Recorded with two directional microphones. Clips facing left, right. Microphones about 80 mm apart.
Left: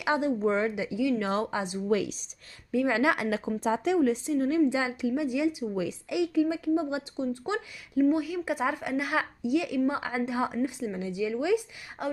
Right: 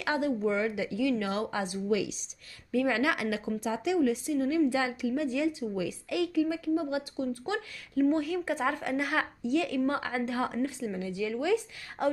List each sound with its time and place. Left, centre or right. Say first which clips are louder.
0.0 s a woman's voice: left 2 dB; centre
0.4 s a woman's voice: left 2 dB; left
0.7 s a woman's voice: left 1 dB; centre
1.2 s a woman's voice: left 2 dB; left
1.9 s a woman's voice: left 3 dB; left
2.7 s a woman's voice: left 2 dB; left
4.6 s a woman's voice: left 2 dB; left
8.0 s a woman's voice: left 2 dB; centre
12.0 s speech: right 2 dB; centre